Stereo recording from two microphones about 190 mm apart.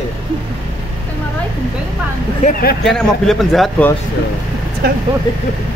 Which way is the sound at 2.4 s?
50° left (ahead or behind).